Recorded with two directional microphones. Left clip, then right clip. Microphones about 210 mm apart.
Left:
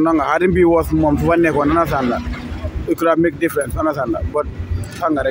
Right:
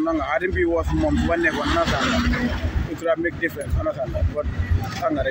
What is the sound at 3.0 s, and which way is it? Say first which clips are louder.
Speech: left 6 dB; 50° left (ahead or behind).